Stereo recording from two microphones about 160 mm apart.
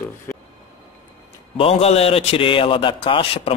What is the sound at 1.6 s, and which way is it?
A man's voice, 40° left (ahead or behind).